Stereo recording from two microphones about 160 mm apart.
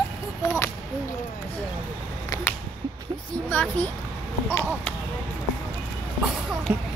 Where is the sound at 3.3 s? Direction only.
10° left (ahead or behind).